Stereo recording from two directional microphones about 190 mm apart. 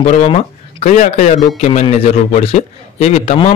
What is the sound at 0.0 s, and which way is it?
A man's voice, 35° left (ahead or behind).